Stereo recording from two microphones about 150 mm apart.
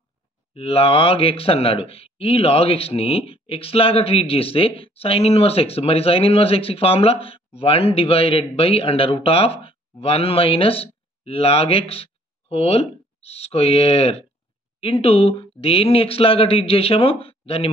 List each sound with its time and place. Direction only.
0.6 s speech: 40° left (ahead or behind)